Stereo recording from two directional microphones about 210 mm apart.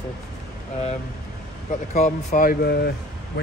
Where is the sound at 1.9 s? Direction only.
35° left (ahead or behind); by 2.9 s 50° left (ahead or behind).